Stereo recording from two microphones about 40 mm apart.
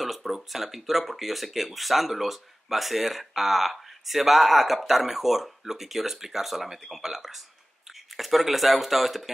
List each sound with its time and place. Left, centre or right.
0.0 s speech: centre